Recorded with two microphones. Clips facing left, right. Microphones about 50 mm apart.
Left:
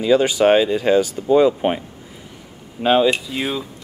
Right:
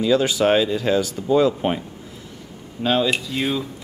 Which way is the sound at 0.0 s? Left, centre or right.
Centre.